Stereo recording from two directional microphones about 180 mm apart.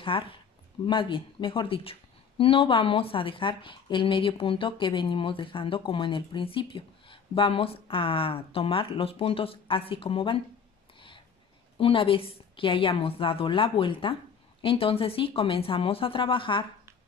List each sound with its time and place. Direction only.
0.1 s speech: 25° left (ahead or behind)
11.8 s speech: 30° left (ahead or behind)